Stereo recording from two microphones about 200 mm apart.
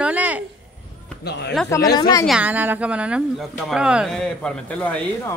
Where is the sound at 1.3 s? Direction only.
55° left (ahead or behind).